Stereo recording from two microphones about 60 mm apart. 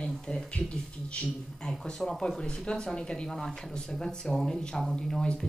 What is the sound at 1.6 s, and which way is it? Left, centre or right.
A woman's voice, centre.